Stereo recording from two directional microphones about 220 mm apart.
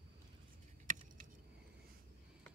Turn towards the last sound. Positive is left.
turn(degrees=-35)  # may be behind; listen again after turning